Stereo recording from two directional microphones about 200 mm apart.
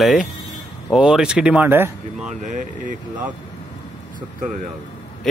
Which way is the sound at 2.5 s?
40° right (ahead or behind).